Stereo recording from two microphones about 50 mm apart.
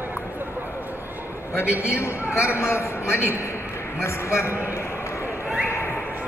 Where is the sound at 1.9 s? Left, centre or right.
Left.